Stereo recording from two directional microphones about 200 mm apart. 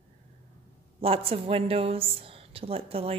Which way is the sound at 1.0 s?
30° right (ahead or behind).